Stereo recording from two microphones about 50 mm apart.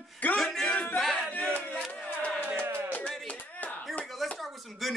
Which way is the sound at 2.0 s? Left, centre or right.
Left.